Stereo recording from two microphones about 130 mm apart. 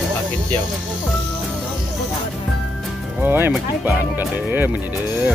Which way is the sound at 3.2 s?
15° right (ahead or behind).